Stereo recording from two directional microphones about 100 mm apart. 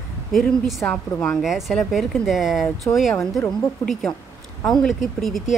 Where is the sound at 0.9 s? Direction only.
10° left (ahead or behind).